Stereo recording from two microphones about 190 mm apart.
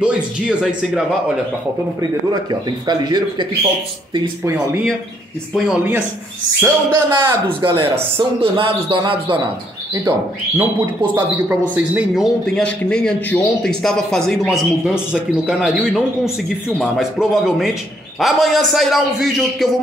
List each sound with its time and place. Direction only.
0.0 s speech: 5° right (ahead or behind)
2.9 s speech: 20° right (ahead or behind)
6.6 s speech: 15° right (ahead or behind)
10.6 s speech: 10° right (ahead or behind)
12.5 s a man's voice: 5° left (ahead or behind)